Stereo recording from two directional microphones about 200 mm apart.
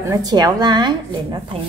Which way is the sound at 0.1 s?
20° right (ahead or behind).